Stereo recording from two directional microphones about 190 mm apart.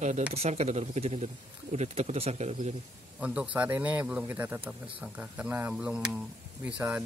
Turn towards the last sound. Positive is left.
turn(degrees=-5)  # may be behind; listen again after turning